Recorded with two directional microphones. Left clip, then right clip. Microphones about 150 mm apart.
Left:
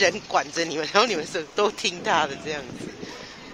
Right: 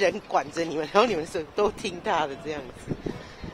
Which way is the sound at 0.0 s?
5° right (ahead or behind).